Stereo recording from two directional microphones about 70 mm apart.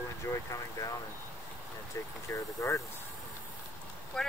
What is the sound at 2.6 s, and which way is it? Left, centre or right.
Speech, left.